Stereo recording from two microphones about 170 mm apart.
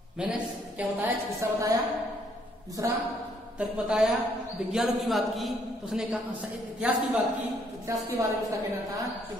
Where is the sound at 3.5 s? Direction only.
5° right (ahead or behind).